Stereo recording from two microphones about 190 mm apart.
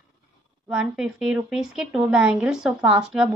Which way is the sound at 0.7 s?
5° right (ahead or behind).